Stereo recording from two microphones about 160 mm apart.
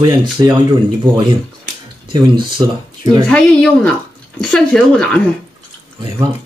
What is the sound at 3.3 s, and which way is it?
Speech, 5° left (ahead or behind).